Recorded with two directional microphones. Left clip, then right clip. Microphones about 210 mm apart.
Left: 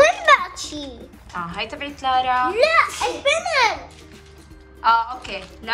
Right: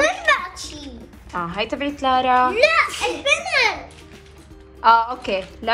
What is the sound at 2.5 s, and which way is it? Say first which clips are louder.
A child's voice: even; 20° left (ahead or behind).